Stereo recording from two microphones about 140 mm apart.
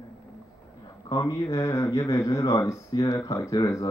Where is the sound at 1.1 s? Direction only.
25° left (ahead or behind).